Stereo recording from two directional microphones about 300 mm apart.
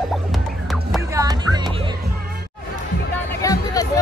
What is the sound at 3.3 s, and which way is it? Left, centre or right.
Music, centre.